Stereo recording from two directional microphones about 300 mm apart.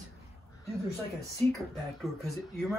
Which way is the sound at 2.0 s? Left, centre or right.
Centre.